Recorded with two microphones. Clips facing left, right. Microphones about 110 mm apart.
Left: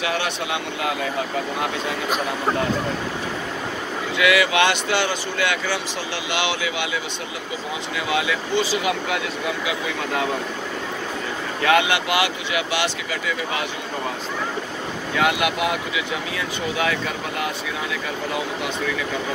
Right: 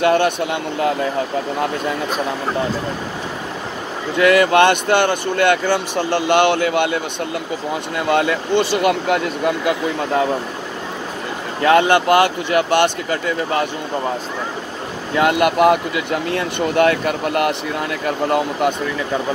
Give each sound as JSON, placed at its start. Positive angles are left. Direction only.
{"t": 0.0, "sound": "speech", "side_deg": -50}
{"t": 4.2, "sound": "speech", "side_deg": -45}
{"t": 8.1, "sound": "speech", "side_deg": -50}
{"t": 11.6, "sound": "speech", "side_deg": -40}
{"t": 15.2, "sound": "speech", "side_deg": -50}